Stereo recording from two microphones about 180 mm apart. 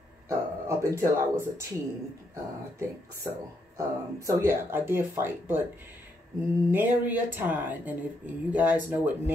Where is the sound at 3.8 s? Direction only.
15° right (ahead or behind).